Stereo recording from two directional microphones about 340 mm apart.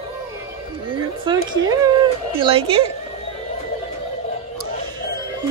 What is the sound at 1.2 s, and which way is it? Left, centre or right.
A woman's voice, centre.